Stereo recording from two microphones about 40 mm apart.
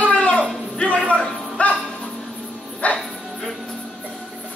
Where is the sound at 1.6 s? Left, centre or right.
Left.